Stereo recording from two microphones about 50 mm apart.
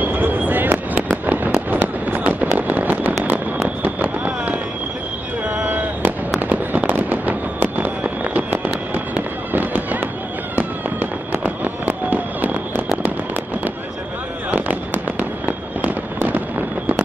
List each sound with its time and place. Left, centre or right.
0.0 s fireworks: right
3.6 s a sound: right
5.7 s fireworks: right
14.5 s fireworks: right